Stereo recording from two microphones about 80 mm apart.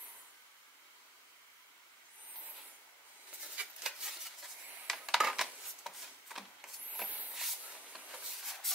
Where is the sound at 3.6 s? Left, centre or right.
Centre.